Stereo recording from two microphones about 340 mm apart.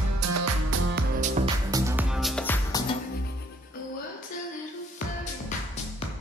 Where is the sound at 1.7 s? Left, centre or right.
Centre.